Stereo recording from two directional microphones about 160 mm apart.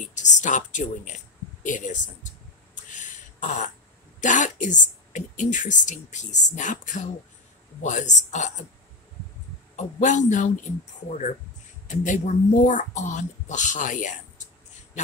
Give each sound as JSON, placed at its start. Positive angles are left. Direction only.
{"t": 0.0, "sound": "a sound", "side_deg": 50}
{"t": 4.2, "sound": "a woman's voice", "side_deg": 50}
{"t": 9.8, "sound": "a woman's voice", "side_deg": 50}
{"t": 11.9, "sound": "a woman's voice", "side_deg": 50}